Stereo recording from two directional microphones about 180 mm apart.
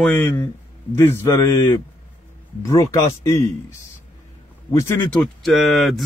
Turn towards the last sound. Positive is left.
turn(degrees=0)  # may be behind; listen again after turning